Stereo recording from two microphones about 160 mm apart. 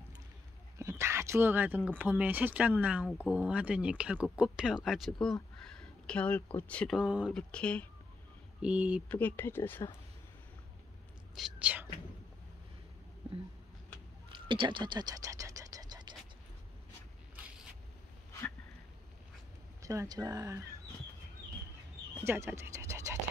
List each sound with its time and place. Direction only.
0.7 s speech: 20° right (ahead or behind); by 7.0 s 10° left (ahead or behind)
7.0 s speech: 5° right (ahead or behind)
7.3 s speech: 5° left (ahead or behind)
8.6 s speech: 10° right (ahead or behind)
9.1 s speech: 10° left (ahead or behind)
11.3 s speech: 5° right (ahead or behind)
14.3 s a sound: 30° right (ahead or behind)
19.8 s speech: 20° right (ahead or behind)
22.2 s speech: 15° right (ahead or behind)